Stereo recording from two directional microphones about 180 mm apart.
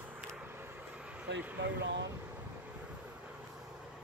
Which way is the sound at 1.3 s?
75° right (ahead or behind).